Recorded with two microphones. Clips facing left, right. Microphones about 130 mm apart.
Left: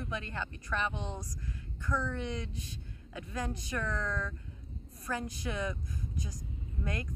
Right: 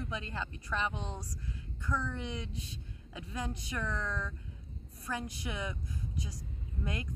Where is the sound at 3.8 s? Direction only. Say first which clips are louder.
Left 1 dB; 5° right (ahead or behind).